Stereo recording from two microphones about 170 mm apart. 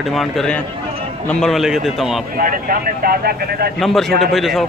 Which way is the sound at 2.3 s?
55° right (ahead or behind).